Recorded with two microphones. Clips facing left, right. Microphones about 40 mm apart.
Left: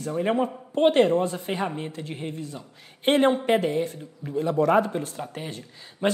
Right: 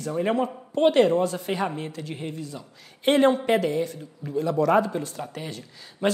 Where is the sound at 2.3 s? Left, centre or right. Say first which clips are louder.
Even; left.